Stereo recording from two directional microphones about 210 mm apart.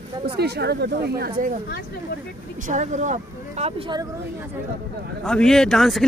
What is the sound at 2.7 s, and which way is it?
Speech, 35° right (ahead or behind).